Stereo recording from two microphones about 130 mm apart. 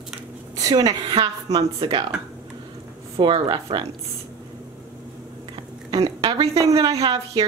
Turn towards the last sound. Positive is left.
turn(degrees=-30)  # may be behind; listen again after turning